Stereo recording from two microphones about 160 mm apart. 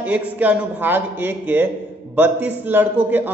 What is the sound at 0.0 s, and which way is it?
Speech, 10° right (ahead or behind).